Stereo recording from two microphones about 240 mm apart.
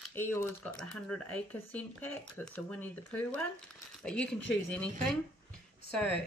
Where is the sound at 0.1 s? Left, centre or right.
Centre.